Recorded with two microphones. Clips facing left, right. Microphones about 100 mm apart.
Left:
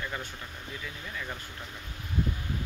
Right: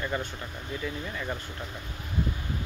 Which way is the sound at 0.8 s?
10° right (ahead or behind).